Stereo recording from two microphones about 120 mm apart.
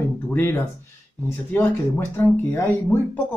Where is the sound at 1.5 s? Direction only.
20° left (ahead or behind).